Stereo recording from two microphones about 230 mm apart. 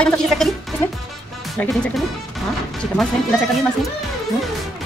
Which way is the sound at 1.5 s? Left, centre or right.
Centre.